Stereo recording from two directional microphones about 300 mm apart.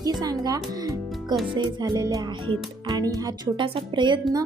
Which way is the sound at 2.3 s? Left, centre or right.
Right.